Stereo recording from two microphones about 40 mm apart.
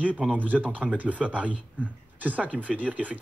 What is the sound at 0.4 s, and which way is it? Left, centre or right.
Speech, right.